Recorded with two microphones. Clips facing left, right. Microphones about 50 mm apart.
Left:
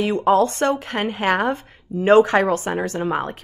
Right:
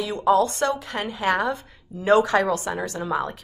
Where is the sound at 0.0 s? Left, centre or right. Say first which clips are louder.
Left 3 dB; left.